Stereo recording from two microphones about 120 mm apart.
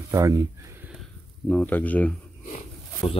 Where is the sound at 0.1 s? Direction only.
25° right (ahead or behind).